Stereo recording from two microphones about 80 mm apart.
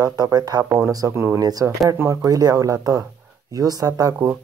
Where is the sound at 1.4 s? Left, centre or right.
Right.